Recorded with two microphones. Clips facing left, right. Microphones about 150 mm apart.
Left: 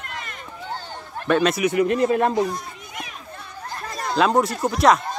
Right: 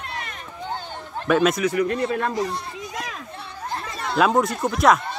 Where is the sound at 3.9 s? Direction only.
40° left (ahead or behind).